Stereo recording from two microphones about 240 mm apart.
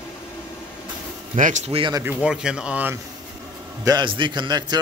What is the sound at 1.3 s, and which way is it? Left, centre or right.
Speech, right.